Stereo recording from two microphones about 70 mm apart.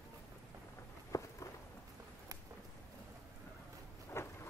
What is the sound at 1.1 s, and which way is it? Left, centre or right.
Walk, left.